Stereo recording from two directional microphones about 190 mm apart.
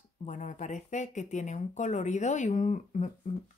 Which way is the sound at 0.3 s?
40° left (ahead or behind).